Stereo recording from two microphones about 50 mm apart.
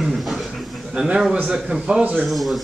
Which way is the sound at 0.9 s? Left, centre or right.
Centre.